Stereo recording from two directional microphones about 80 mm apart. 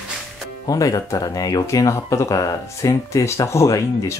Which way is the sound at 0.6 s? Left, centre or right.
Left.